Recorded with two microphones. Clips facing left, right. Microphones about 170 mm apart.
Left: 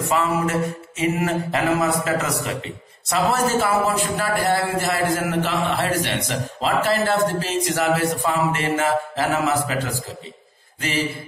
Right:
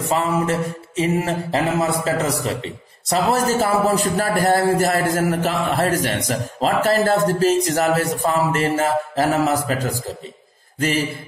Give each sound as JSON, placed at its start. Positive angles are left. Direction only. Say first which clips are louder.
{"t": 0.0, "sound": "mantra", "louder": "right 1 dB", "side_deg": -30}
{"t": 1.8, "sound": "a man's voice", "louder": "right 1 dB", "side_deg": -30}